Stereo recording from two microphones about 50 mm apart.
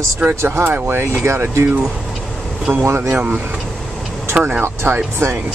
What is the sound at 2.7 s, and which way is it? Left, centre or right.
Speech, right.